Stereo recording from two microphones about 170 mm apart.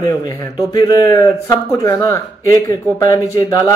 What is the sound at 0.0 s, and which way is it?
A man's voice, 20° left (ahead or behind).